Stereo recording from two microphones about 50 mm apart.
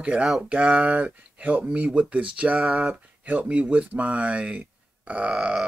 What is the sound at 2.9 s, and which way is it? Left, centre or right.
Speech, right.